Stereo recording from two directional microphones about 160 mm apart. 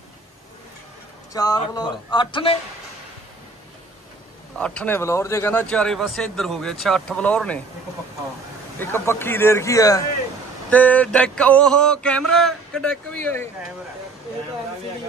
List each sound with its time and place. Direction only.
1.3 s speech: 25° left (ahead or behind)
4.6 s speech: 5° left (ahead or behind)
8.7 s speech: 15° left (ahead or behind)
10.7 s speech: 10° left (ahead or behind)